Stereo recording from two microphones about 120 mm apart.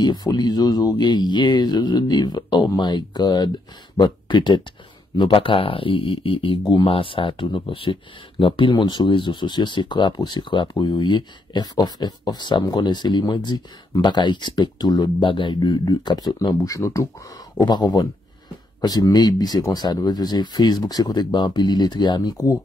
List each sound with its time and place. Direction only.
0.0 s speech: 35° left (ahead or behind)